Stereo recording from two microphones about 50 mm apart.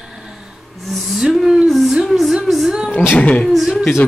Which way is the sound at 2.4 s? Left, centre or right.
Centre.